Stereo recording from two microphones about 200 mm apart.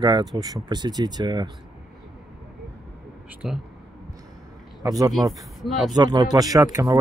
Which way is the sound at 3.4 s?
Centre (ahead or behind).